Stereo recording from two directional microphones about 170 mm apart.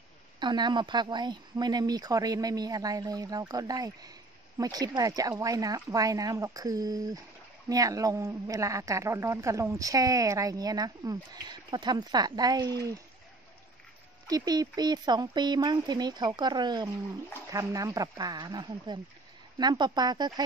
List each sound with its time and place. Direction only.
0.4 s a woman's voice: 25° right (ahead or behind)
14.2 s a woman's voice: 20° right (ahead or behind)